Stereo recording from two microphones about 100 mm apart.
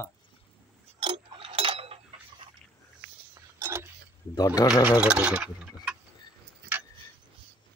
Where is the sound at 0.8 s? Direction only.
60° right (ahead or behind).